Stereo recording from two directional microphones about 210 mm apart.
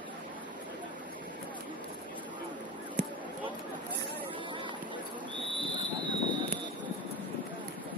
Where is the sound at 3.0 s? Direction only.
35° right (ahead or behind).